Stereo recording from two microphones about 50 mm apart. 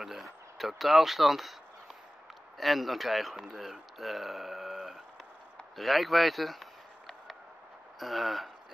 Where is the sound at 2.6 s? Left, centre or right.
Centre.